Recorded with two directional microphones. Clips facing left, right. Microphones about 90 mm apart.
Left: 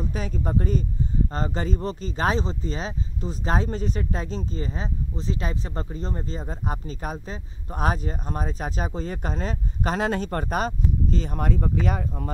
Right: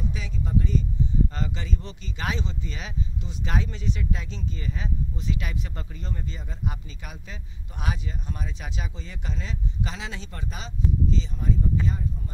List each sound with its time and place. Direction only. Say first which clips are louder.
0.0 s speech: left 4 dB; 45° left (ahead or behind); by 12.3 s 75° left (ahead or behind)